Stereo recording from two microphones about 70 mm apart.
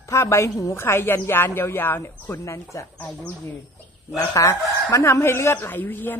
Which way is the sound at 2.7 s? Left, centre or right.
Left.